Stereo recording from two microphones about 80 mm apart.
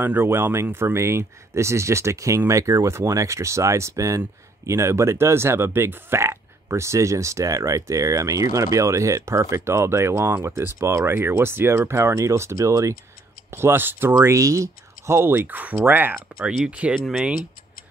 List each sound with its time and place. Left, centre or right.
0.0 s speech: right
13.5 s speech: right
14.3 s speech: right
16.3 s speech: centre